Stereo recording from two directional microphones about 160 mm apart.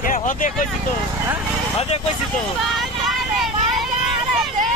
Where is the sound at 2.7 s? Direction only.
Centre (ahead or behind).